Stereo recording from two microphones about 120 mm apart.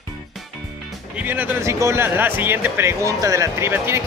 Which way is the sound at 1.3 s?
25° right (ahead or behind).